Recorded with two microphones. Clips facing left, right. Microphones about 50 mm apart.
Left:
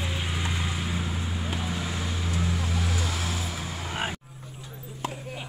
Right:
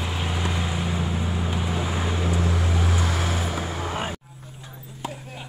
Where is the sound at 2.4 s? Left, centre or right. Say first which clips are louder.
Right 4 dB; right.